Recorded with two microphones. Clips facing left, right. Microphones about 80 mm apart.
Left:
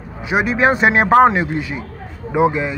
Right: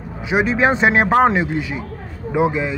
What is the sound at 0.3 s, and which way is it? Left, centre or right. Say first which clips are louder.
Speech: left 1 dB; centre.